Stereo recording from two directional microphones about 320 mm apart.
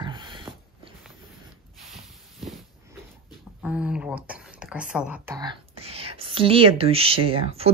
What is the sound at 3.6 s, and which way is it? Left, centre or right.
Speech, centre.